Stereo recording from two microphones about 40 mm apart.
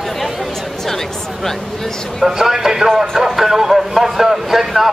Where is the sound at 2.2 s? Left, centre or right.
Centre.